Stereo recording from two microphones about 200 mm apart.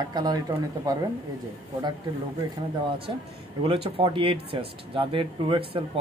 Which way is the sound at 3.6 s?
25° right (ahead or behind).